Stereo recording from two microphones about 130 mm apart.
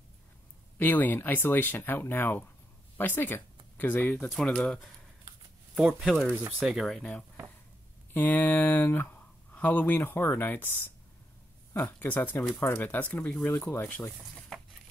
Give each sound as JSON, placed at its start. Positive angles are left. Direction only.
{"t": 0.7, "sound": "speech", "side_deg": 15}
{"t": 5.9, "sound": "speech", "side_deg": 0}
{"t": 11.7, "sound": "speech", "side_deg": 15}
{"t": 14.5, "sound": "patter", "side_deg": 5}